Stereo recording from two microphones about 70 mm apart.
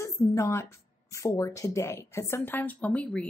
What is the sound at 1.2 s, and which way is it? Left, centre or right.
A woman's voice, left.